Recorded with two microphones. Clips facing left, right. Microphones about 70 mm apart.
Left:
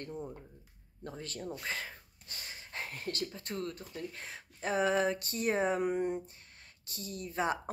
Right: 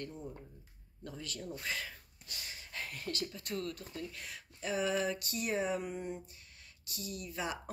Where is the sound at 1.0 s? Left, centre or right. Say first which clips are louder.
Left 3 dB; left.